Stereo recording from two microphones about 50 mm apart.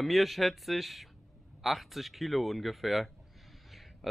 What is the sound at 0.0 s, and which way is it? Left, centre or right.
A man's voice, centre.